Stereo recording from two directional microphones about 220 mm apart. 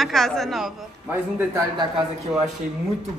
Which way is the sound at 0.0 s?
Centre (ahead or behind).